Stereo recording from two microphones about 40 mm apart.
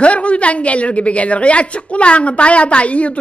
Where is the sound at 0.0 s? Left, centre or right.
Left.